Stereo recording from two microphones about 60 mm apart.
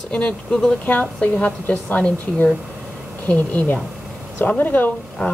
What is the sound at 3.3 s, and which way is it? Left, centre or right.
Speech, left.